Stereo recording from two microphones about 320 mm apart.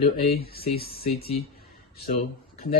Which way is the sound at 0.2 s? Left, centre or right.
Left.